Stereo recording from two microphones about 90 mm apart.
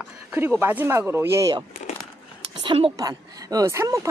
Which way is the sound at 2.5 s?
75° right (ahead or behind).